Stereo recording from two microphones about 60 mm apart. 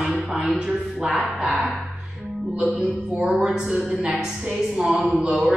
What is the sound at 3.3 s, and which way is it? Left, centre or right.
A woman's voice, centre.